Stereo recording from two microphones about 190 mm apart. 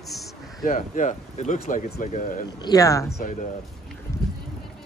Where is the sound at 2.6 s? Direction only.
20° left (ahead or behind).